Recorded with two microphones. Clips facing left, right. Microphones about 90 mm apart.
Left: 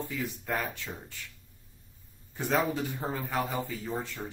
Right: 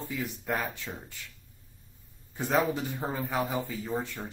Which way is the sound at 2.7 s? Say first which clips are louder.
Even; 15° right (ahead or behind).